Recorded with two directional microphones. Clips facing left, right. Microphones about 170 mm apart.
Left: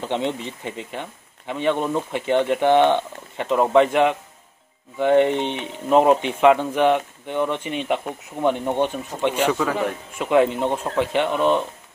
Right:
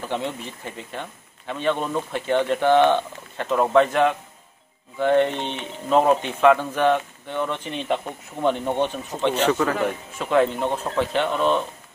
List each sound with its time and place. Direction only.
0.0 s speech: 20° left (ahead or behind)